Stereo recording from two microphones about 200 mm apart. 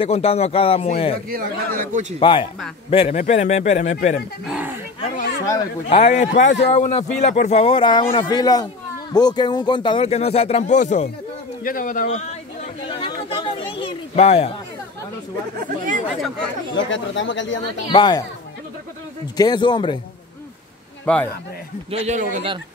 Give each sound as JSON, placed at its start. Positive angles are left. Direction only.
{"t": 0.0, "sound": "speech", "side_deg": 30}
{"t": 1.3, "sound": "speech", "side_deg": -45}
{"t": 2.1, "sound": "a man's voice", "side_deg": 25}
{"t": 4.5, "sound": "speech", "side_deg": -5}
{"t": 5.9, "sound": "a man's voice", "side_deg": 35}
{"t": 12.8, "sound": "a sound", "side_deg": 25}
{"t": 16.1, "sound": "speech", "side_deg": 0}
{"t": 16.7, "sound": "speech", "side_deg": 70}
{"t": 17.8, "sound": "speech", "side_deg": 20}
{"t": 19.3, "sound": "speech", "side_deg": 20}
{"t": 21.0, "sound": "speech", "side_deg": 10}
{"t": 21.9, "sound": "speech", "side_deg": -35}